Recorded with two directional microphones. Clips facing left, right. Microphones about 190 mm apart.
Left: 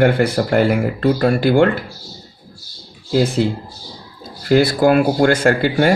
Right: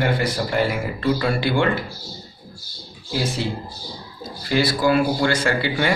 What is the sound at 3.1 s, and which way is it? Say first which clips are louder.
Speech: left 8 dB; 50° left (ahead or behind).